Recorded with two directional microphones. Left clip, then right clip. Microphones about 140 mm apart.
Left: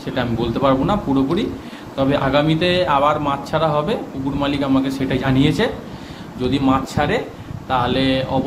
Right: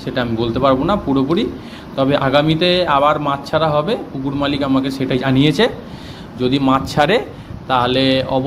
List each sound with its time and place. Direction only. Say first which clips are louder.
0.0 s a man's voice: right 2 dB; 30° right (ahead or behind)
6.7 s a man's voice: right 6 dB; 65° right (ahead or behind); by 8.4 s 45° right (ahead or behind)